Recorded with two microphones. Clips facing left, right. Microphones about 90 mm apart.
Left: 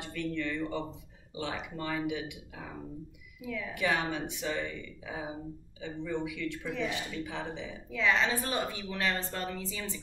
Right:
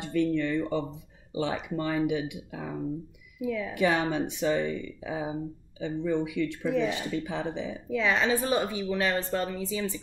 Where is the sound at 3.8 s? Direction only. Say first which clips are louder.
Right 5 dB; 25° right (ahead or behind).